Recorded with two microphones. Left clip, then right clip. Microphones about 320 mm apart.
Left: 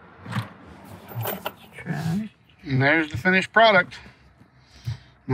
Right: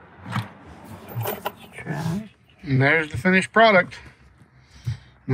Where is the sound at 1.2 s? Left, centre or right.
Centre.